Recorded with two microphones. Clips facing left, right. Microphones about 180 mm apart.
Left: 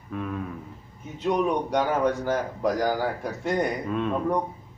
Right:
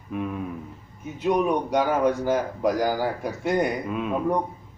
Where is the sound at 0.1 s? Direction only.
15° right (ahead or behind).